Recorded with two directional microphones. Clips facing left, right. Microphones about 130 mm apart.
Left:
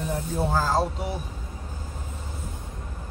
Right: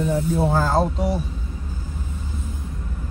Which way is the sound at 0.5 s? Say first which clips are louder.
Right 4 dB; 50° right (ahead or behind).